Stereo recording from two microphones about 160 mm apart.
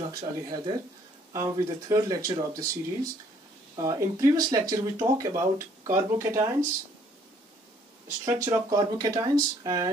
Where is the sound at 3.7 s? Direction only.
25° right (ahead or behind).